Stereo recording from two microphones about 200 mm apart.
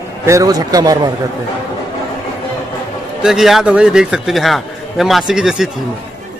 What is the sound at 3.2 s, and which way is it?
A man's voice, centre (ahead or behind).